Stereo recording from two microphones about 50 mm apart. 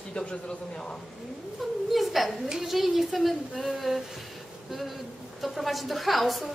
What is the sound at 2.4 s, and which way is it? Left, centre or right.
A woman's voice, centre.